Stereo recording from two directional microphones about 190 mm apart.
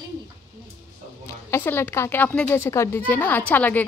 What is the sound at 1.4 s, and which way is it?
A woman's voice, 15° left (ahead or behind).